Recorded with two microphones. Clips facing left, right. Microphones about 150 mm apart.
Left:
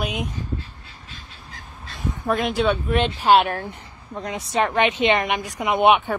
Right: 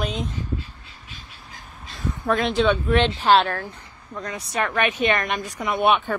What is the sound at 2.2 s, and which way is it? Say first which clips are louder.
Speech: right 1 dB; 5° left (ahead or behind).